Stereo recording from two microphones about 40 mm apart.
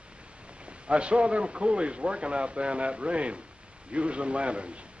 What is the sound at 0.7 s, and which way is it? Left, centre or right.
A man's voice, right.